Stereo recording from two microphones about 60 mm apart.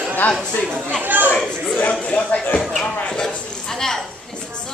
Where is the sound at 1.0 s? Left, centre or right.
Right.